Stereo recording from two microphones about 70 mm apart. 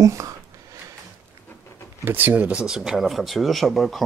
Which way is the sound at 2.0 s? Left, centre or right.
Right.